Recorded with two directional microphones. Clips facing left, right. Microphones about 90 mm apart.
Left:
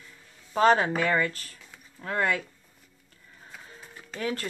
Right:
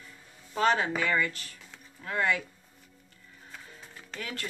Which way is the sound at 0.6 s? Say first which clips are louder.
Left 5 dB; 45° left (ahead or behind).